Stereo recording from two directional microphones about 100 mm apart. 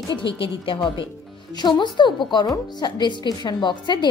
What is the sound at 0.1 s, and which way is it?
A woman's voice, 55° left (ahead or behind).